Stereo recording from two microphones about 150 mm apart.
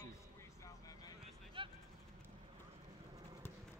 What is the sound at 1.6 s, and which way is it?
Vehicle, 35° right (ahead or behind).